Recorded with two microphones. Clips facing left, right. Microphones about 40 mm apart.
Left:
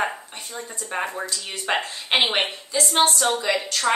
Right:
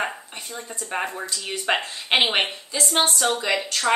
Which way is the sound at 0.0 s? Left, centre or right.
Centre.